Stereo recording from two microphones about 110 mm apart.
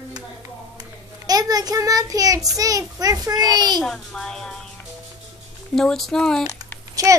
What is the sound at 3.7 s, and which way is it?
Speech, 5° left (ahead or behind).